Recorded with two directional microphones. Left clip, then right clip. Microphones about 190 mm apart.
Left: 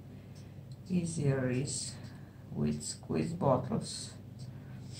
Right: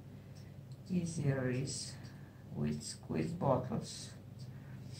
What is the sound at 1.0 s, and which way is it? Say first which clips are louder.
Speech: left 4 dB; 5° left (ahead or behind).